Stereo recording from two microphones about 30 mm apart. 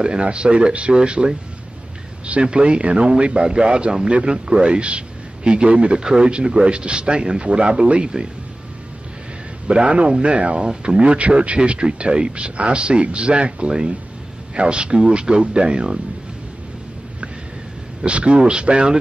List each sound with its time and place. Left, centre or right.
0.0 s a man's voice: right
2.4 s a man's voice: right
6.0 s a man's voice: right
9.8 s a man's voice: right
10.6 s speech: right
11.1 s a man's voice: right
18.0 s a man's voice: right